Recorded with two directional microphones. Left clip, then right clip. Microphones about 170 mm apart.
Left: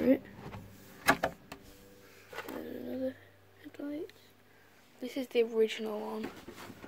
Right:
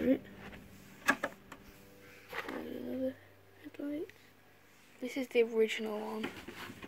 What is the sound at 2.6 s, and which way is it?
Bird, 5° right (ahead or behind).